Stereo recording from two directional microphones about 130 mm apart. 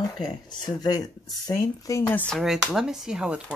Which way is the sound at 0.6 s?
30° left (ahead or behind).